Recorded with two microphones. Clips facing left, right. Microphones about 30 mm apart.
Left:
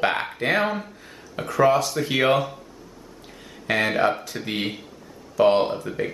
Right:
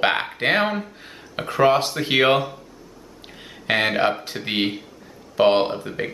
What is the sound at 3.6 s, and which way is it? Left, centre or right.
Speech, right.